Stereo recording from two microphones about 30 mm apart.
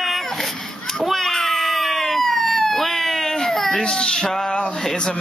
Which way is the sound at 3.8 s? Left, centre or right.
Left.